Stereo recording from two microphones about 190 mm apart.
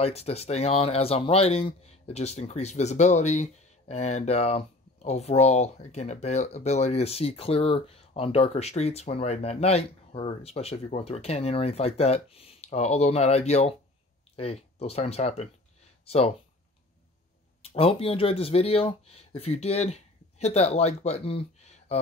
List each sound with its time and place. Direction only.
0.0 s speech: 35° left (ahead or behind)
17.6 s speech: 30° left (ahead or behind)